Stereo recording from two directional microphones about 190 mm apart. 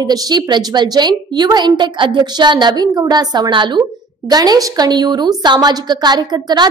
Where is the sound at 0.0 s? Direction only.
20° right (ahead or behind).